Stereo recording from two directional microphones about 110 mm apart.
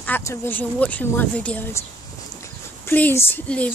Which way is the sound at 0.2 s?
20° left (ahead or behind).